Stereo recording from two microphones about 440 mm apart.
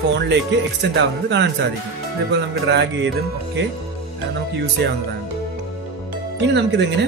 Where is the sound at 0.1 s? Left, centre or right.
Right.